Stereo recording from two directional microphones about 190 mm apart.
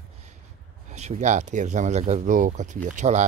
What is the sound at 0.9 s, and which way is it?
Speech, 35° right (ahead or behind).